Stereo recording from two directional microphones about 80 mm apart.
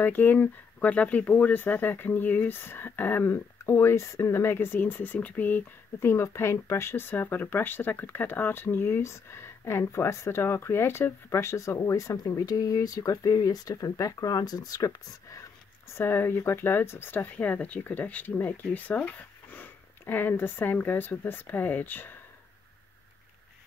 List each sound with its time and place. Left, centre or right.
0.0 s speech: left
15.9 s speech: left